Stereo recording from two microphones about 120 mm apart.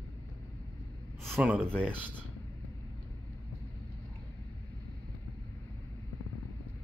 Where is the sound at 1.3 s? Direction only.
10° right (ahead or behind).